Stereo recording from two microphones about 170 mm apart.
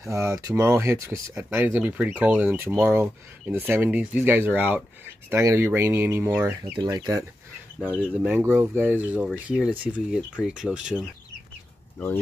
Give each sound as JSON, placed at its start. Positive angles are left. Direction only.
{"t": 0.0, "sound": "speech", "side_deg": -20}
{"t": 6.8, "sound": "speech", "side_deg": -25}
{"t": 7.8, "sound": "speech", "side_deg": -10}